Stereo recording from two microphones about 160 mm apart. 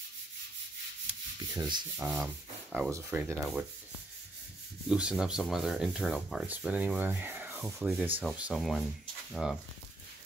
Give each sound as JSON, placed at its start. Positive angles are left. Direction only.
{"t": 1.5, "sound": "rub", "side_deg": -25}
{"t": 2.0, "sound": "speech", "side_deg": -5}
{"t": 2.9, "sound": "sanding", "side_deg": -15}
{"t": 4.8, "sound": "speech", "side_deg": -5}
{"t": 7.6, "sound": "sanding", "side_deg": -10}
{"t": 8.4, "sound": "speech", "side_deg": -5}